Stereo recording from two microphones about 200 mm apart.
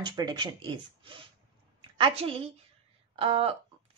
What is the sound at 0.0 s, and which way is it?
A woman's voice, 20° right (ahead or behind).